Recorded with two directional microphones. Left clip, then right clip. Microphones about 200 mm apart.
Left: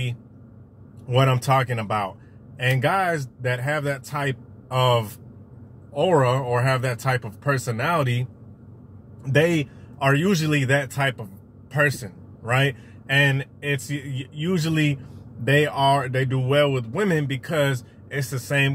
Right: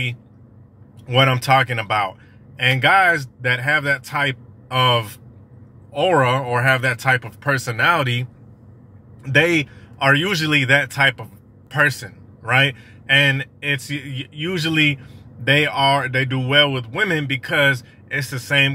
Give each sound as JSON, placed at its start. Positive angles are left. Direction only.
{"t": 1.1, "sound": "speech", "side_deg": 5}
{"t": 9.2, "sound": "speech", "side_deg": 5}
{"t": 12.4, "sound": "speech", "side_deg": 5}